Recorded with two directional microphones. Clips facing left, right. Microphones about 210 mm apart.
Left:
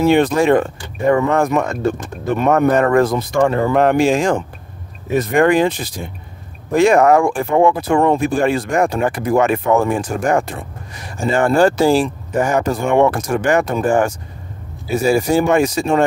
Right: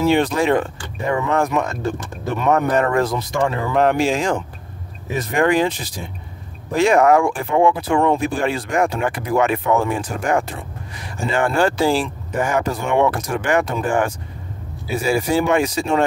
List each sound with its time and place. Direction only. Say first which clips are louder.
0.0 s speech: left 4 dB; 55° left (ahead or behind)